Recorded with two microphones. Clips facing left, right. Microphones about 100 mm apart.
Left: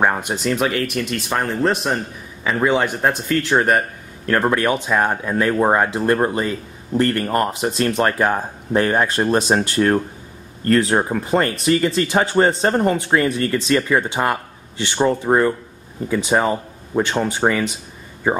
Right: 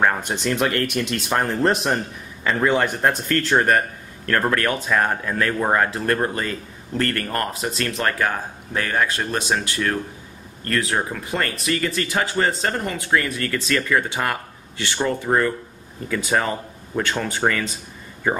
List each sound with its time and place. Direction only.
0.0 s speech: 20° left (ahead or behind)
0.3 s speech: 5° left (ahead or behind); by 17.6 s 20° left (ahead or behind)